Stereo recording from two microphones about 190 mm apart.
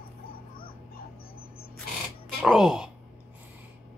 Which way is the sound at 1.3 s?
50° left (ahead or behind).